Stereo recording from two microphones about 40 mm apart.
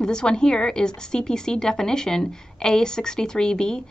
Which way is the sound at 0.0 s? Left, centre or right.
Left.